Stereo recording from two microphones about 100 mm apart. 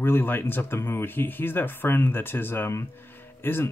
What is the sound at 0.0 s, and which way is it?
Speech, 20° left (ahead or behind).